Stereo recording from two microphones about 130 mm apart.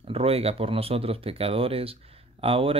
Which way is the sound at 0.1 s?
50° right (ahead or behind).